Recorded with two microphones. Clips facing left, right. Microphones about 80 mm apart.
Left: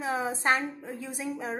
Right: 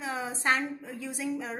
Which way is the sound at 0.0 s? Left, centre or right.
Left.